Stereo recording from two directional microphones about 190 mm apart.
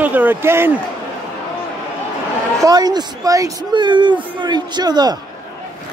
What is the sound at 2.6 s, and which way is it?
Speech, 20° right (ahead or behind).